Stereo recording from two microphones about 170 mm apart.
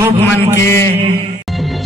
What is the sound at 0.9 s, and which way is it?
Mantra, 35° right (ahead or behind).